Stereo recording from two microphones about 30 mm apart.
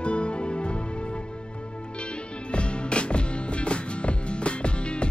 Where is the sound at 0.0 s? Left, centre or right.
Left.